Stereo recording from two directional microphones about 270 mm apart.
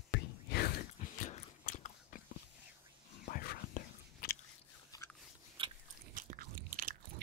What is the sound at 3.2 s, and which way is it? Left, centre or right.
Whispering, left.